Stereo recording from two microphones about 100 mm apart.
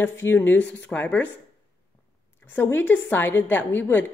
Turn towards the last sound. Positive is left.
turn(degrees=20)  # may be behind; listen again after turning